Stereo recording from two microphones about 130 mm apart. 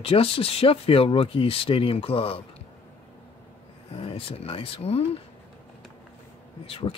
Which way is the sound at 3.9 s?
45° left (ahead or behind).